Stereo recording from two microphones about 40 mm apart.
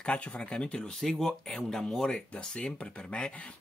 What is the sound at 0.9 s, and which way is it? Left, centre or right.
Speech, centre.